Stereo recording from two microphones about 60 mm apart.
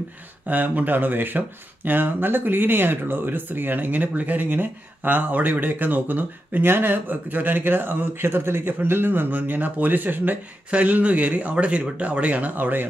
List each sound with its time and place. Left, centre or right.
0.5 s speech: right